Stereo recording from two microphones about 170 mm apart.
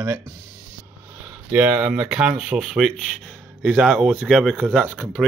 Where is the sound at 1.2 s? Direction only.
10° right (ahead or behind).